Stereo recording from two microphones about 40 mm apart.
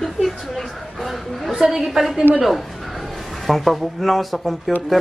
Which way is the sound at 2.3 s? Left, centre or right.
Right.